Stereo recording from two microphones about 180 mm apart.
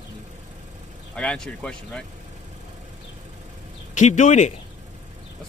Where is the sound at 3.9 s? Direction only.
40° left (ahead or behind).